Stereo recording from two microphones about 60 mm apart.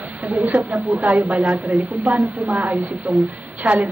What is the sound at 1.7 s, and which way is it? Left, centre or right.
Speech, right.